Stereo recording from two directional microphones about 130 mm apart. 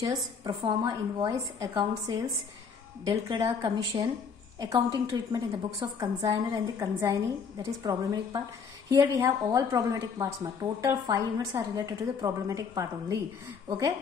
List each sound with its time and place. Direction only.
0.4 s a woman's voice: 40° right (ahead or behind); by 13.9 s 25° right (ahead or behind)